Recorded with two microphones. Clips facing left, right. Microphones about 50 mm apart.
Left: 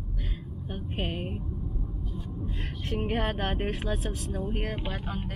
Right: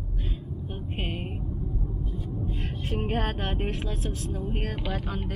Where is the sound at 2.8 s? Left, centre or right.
Centre.